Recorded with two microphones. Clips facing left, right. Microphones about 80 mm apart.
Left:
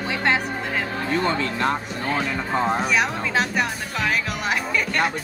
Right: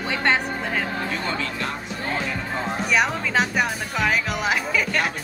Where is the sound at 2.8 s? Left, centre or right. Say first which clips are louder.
Even; centre.